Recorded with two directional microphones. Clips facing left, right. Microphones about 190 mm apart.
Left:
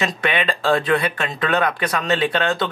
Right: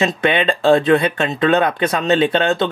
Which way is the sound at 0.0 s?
25° right (ahead or behind).